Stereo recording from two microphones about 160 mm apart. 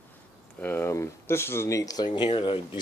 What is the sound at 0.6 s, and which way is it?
Speech, 15° left (ahead or behind).